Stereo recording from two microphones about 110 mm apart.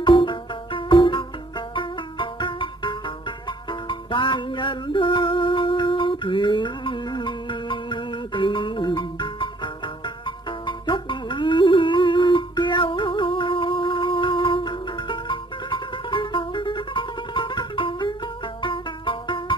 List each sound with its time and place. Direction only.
0.0 s music: 50° left (ahead or behind)